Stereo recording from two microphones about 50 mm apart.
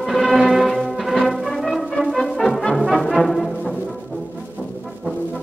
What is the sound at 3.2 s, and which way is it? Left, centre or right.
Music, centre.